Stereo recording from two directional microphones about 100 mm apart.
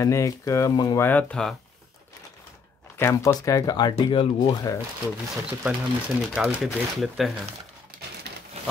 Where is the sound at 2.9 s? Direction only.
25° left (ahead or behind); by 3.9 s 40° left (ahead or behind).